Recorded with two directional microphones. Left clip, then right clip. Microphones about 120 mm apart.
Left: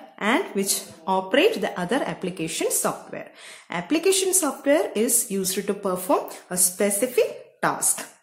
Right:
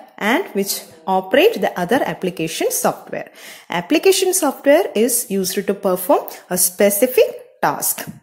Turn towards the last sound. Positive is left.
turn(degrees=-45)  # may be behind; listen again after turning